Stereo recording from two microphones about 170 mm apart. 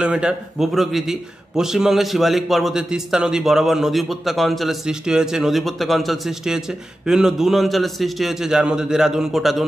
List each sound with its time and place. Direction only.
0.0 s a man's voice: 5° right (ahead or behind)